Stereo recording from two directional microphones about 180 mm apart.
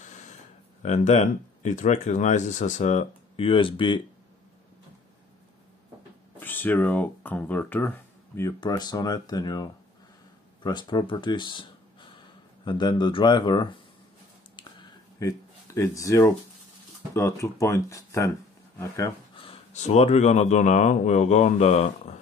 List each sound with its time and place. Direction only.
0.0 s a sound: 40° left (ahead or behind)
0.8 s speech: 40° left (ahead or behind)
3.3 s speech: 30° left (ahead or behind)
6.4 s speech: 10° left (ahead or behind)
14.6 s a sound: 20° left (ahead or behind)
17.1 s speech: 15° left (ahead or behind)
19.3 s speech: 30° left (ahead or behind)